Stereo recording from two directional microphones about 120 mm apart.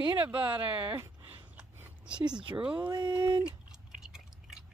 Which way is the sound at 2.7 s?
40° right (ahead or behind).